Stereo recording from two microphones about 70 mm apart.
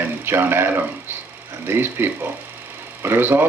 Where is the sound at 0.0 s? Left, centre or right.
Right.